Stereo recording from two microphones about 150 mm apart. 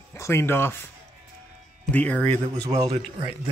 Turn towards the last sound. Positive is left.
turn(degrees=-40)  # may be behind; listen again after turning